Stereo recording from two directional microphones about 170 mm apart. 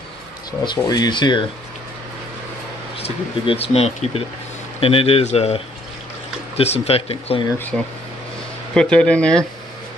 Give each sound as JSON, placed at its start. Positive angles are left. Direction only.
{"t": 0.5, "sound": "speech", "side_deg": 25}
{"t": 3.0, "sound": "speech", "side_deg": 35}
{"t": 7.7, "sound": "speech", "side_deg": 5}